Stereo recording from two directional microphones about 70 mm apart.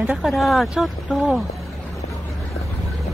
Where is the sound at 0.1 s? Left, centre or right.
Centre.